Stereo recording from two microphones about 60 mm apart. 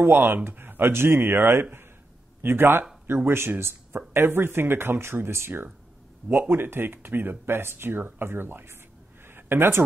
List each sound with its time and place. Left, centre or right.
0.0 s speech: right
6.2 s speech: right
6.5 s speech: right
9.2 s a sound: right